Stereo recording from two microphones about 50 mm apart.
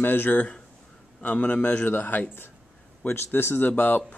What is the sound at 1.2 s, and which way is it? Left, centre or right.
Speech, left.